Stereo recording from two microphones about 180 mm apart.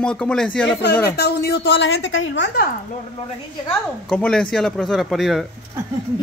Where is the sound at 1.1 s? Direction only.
65° left (ahead or behind).